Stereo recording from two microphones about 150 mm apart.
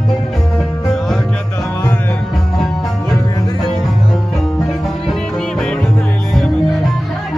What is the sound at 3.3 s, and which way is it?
Music, 25° left (ahead or behind).